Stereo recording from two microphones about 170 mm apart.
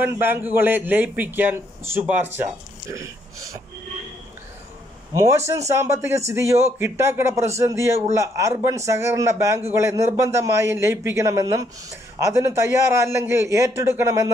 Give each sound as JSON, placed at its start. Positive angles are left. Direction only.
{"t": 0.0, "sound": "speech", "side_deg": -10}
{"t": 5.7, "sound": "speech", "side_deg": -15}